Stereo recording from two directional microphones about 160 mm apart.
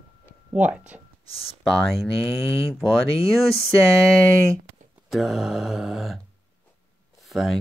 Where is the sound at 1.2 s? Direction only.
35° left (ahead or behind).